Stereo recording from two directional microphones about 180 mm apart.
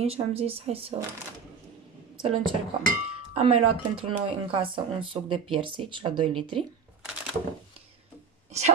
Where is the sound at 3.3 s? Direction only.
30° right (ahead or behind).